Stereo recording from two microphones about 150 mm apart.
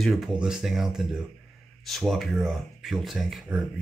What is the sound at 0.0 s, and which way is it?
Speech, centre (ahead or behind).